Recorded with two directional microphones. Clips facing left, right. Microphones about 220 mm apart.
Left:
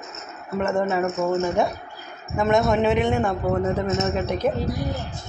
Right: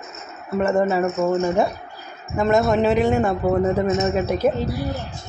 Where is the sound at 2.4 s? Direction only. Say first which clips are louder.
Right 2 dB; centre (ahead or behind).